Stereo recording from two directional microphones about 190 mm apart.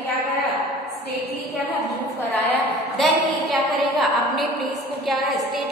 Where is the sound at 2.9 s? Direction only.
Centre (ahead or behind).